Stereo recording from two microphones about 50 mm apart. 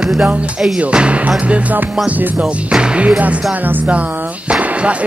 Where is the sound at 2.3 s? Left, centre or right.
Centre.